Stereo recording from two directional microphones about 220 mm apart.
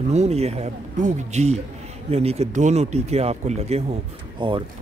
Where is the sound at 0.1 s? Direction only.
30° right (ahead or behind).